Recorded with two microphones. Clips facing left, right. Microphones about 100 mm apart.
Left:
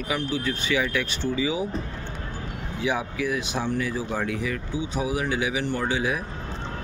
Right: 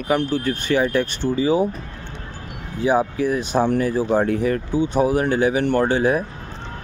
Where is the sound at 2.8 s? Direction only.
40° right (ahead or behind).